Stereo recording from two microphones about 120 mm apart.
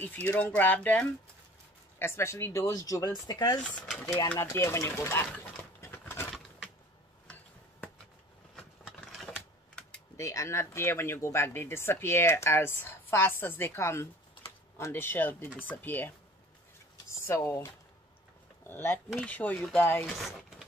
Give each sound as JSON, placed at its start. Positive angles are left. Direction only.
{"t": 0.0, "sound": "speech", "side_deg": 15}
{"t": 3.8, "sound": "speech", "side_deg": 0}
{"t": 4.3, "sound": "speech", "side_deg": 20}
{"t": 5.8, "sound": "a sound", "side_deg": 20}
{"t": 8.5, "sound": "vehicle", "side_deg": 5}
{"t": 10.1, "sound": "speech", "side_deg": 25}
{"t": 16.9, "sound": "a sound", "side_deg": 25}
{"t": 18.7, "sound": "speech", "side_deg": 20}
{"t": 20.1, "sound": "speech", "side_deg": 0}